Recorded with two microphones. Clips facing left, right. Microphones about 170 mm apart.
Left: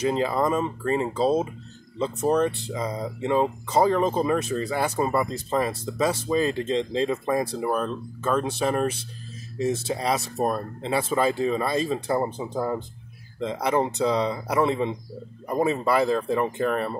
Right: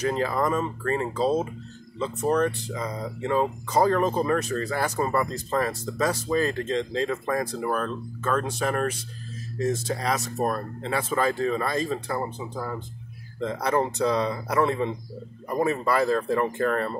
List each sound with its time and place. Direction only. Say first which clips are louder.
0.0 s speech: left 2 dB; 20° left (ahead or behind)